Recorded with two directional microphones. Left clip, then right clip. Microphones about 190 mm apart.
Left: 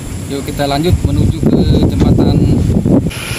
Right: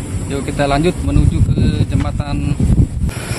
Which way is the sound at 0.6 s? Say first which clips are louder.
Even; 5° right (ahead or behind).